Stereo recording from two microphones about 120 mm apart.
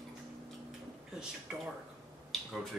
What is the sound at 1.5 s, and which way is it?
Speech, 5° right (ahead or behind).